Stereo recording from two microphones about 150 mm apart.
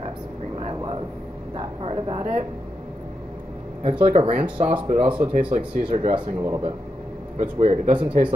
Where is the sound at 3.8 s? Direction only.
40° right (ahead or behind).